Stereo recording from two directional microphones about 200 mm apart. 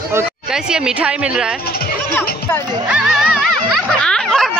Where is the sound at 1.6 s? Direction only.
50° left (ahead or behind).